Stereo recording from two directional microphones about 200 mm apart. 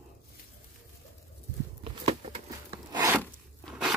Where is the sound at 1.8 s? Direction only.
30° right (ahead or behind).